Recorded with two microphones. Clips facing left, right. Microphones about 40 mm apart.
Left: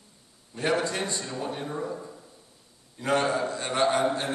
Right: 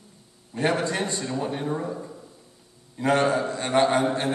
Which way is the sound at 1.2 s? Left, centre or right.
Centre.